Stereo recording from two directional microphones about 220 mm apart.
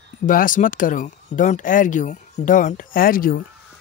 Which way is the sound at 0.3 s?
40° left (ahead or behind).